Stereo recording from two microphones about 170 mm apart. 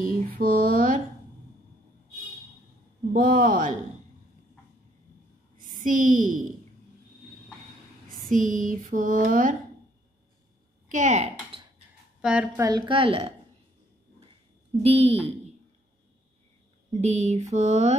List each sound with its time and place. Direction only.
0.4 s speech: 60° right (ahead or behind)
3.1 s a sound: 55° right (ahead or behind)
5.6 s a woman's voice: 50° right (ahead or behind)
8.2 s a sound: 50° right (ahead or behind)
10.9 s a woman's voice: 45° right (ahead or behind)
11.5 s a sound: 35° right (ahead or behind)
12.2 s a woman's voice: 5° right (ahead or behind)
12.5 s mantra: 20° right (ahead or behind)
14.8 s mantra: 35° right (ahead or behind)
17.0 s mantra: 40° right (ahead or behind)